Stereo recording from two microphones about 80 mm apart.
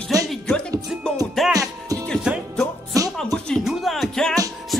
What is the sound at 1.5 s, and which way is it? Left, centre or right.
Music, right.